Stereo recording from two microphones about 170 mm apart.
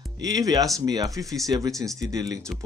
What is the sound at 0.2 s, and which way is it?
Speech, 20° right (ahead or behind).